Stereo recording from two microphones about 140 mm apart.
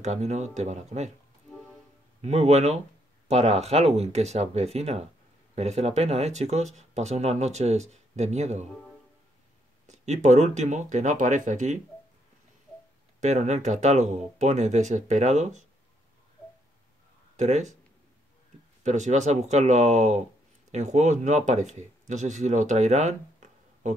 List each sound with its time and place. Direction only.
0.0 s speech: 55° right (ahead or behind)
2.2 s speech: 50° right (ahead or behind)
9.8 s speech: 55° right (ahead or behind)
13.2 s speech: 55° right (ahead or behind)
17.4 s speech: 55° right (ahead or behind)
18.8 s speech: 55° right (ahead or behind)